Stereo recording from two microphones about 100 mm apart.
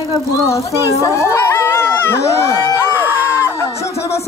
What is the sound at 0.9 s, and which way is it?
Speech, 30° left (ahead or behind).